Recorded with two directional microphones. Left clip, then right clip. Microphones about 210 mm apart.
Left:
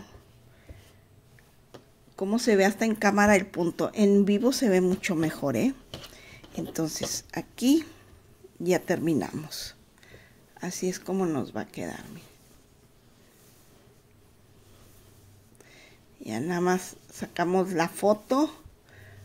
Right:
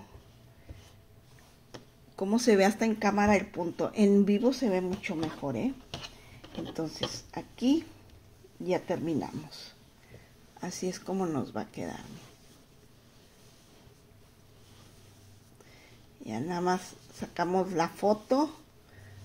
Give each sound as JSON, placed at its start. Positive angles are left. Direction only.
{"t": 1.7, "sound": "a sound", "side_deg": 5}
{"t": 2.9, "sound": "speech", "side_deg": 25}
{"t": 3.9, "sound": "speech", "side_deg": 10}
{"t": 4.4, "sound": "speech", "side_deg": 30}
{"t": 6.7, "sound": "a woman's voice", "side_deg": 25}
{"t": 10.6, "sound": "speech", "side_deg": 15}
{"t": 16.2, "sound": "speech", "side_deg": 20}